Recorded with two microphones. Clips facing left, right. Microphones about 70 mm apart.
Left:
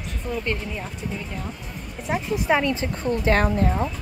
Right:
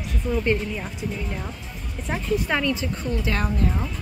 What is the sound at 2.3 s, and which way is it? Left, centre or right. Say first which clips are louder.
A woman's voice: left 1 dB; centre.